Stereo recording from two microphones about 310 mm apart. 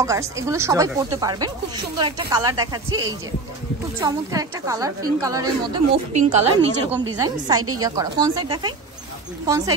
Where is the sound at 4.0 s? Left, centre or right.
Centre.